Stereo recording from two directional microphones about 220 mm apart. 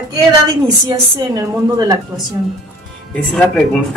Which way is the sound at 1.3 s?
15° right (ahead or behind).